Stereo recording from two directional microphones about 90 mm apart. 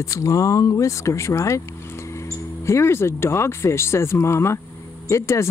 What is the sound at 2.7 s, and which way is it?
Speech, 30° left (ahead or behind).